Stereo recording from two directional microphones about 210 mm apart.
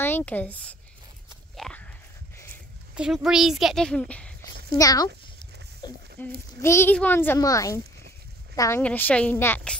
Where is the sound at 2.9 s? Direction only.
5° right (ahead or behind).